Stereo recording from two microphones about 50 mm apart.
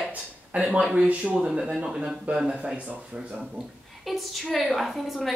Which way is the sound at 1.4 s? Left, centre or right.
Centre.